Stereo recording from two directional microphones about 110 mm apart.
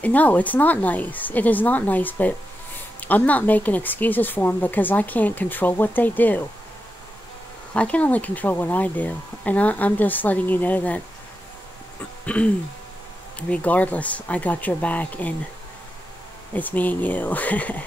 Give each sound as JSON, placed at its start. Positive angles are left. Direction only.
{"t": 0.0, "sound": "speech", "side_deg": 15}
{"t": 7.7, "sound": "speech", "side_deg": 10}
{"t": 12.3, "sound": "speech", "side_deg": 15}
{"t": 16.5, "sound": "speech", "side_deg": 15}